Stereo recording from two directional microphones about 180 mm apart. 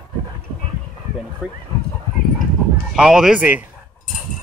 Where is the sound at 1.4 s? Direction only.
5° right (ahead or behind).